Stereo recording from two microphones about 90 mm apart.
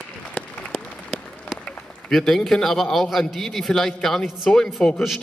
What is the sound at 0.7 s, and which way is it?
Applause, 5° right (ahead or behind).